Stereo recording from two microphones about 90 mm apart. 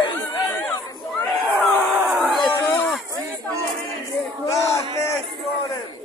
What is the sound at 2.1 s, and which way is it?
Crowd, centre (ahead or behind).